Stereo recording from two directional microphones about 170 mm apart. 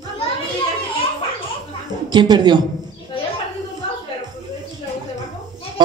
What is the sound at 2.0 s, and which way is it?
Speech, 25° right (ahead or behind).